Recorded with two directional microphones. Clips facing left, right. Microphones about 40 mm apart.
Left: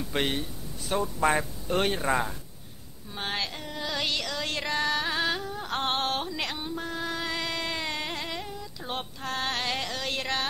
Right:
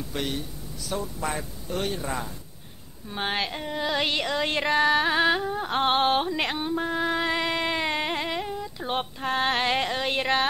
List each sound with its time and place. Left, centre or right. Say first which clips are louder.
0.1 s speech: left 3 dB; left
3.1 s child singing: right 4 dB; right